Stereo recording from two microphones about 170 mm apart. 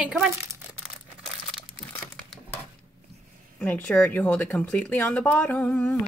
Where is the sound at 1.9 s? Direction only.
5° left (ahead or behind).